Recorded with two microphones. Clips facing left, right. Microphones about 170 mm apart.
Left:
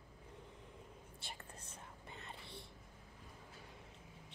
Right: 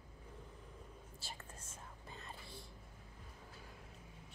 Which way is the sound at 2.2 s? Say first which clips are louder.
Left 1 dB; 25° left (ahead or behind).